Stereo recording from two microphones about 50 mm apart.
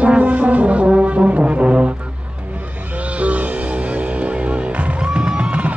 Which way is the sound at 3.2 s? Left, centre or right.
Right.